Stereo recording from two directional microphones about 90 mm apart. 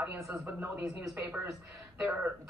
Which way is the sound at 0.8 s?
35° right (ahead or behind).